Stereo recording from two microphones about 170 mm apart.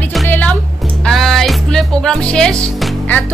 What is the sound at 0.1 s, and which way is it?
Music, 5° left (ahead or behind).